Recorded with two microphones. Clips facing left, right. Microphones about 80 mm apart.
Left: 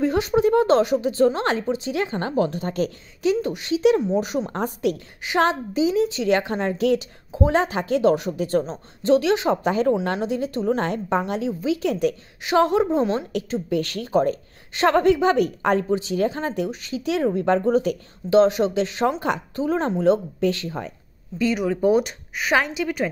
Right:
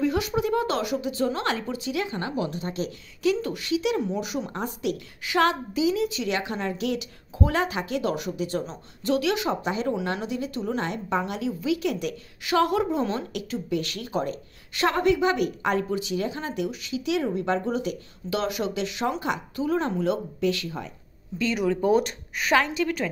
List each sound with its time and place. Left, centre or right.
0.0 s a woman's voice: left
3.2 s a woman's voice: left
5.2 s a woman's voice: left
8.6 s a woman's voice: left
9.5 s a woman's voice: left
12.4 s a woman's voice: left
21.9 s a woman's voice: centre